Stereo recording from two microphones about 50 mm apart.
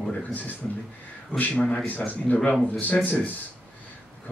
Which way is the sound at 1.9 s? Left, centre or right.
Left.